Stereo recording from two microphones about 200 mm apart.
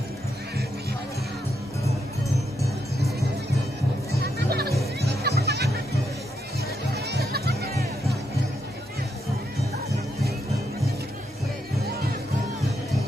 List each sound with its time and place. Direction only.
4.2 s music: 50° right (ahead or behind)
7.1 s music: 55° right (ahead or behind)